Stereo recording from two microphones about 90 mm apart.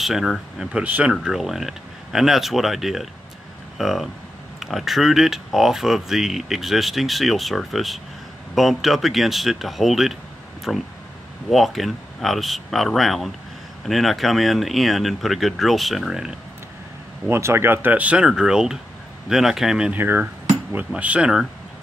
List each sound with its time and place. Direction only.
0.0 s speech: centre (ahead or behind)
0.7 s speech: 15° right (ahead or behind)
1.1 s speech: 5° right (ahead or behind)
17.3 s speech: 30° right (ahead or behind); by 19.9 s 5° right (ahead or behind)
19.9 s speech: 20° right (ahead or behind)